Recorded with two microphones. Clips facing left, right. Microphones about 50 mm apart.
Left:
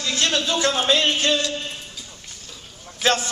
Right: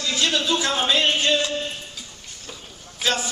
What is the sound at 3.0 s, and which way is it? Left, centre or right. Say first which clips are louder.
Speech: left 4 dB; left.